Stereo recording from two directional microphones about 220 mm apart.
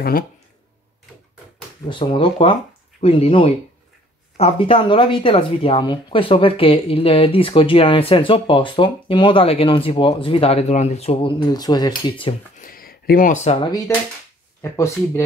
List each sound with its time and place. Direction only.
1.9 s speech: 20° left (ahead or behind)
12.5 s speech: 40° left (ahead or behind); by 15.2 s 10° left (ahead or behind)